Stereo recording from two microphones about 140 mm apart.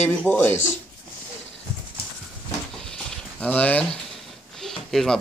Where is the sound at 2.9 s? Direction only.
10° left (ahead or behind).